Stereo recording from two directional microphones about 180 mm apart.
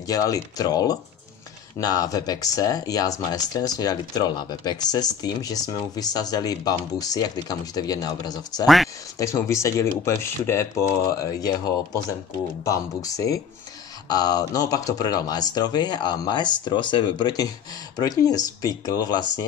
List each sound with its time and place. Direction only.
0.0 s speech: 20° left (ahead or behind)
8.6 s speech: centre (ahead or behind)
9.2 s speech: 15° left (ahead or behind)